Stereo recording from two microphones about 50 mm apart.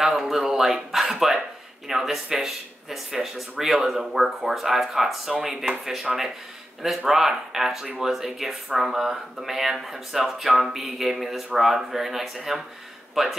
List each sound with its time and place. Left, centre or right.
0.0 s a man's voice: centre